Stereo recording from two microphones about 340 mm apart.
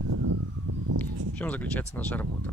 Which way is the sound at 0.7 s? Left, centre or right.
Right.